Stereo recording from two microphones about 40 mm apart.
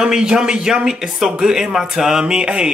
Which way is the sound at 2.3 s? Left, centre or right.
Right.